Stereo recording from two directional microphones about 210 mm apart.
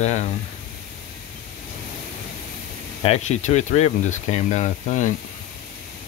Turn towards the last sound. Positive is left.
turn(degrees=35)  # may be behind; listen again after turning